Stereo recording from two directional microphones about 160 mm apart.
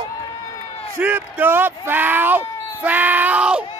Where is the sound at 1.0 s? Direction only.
10° right (ahead or behind).